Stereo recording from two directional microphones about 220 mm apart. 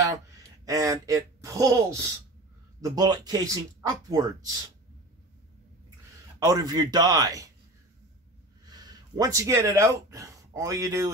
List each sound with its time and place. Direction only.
0.7 s speech: 15° right (ahead or behind)
6.4 s speech: 15° right (ahead or behind)
8.6 s speech: 15° right (ahead or behind)